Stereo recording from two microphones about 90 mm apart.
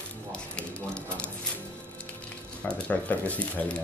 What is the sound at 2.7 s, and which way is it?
Speech, 15° left (ahead or behind).